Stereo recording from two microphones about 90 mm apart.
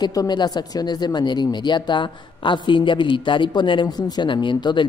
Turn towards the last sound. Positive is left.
turn(degrees=60)  # may be behind; listen again after turning